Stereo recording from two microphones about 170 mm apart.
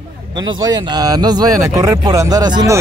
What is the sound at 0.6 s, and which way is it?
Speech, 25° right (ahead or behind).